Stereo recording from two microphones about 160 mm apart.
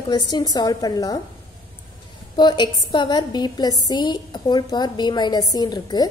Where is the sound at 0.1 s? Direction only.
25° left (ahead or behind).